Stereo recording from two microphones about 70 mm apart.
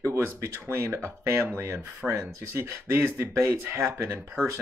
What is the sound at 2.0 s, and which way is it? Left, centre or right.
Speech, right.